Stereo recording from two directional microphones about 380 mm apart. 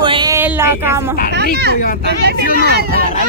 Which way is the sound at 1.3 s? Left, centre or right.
Right.